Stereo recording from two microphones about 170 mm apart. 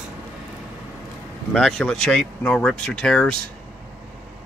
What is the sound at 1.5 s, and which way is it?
Speech, centre (ahead or behind).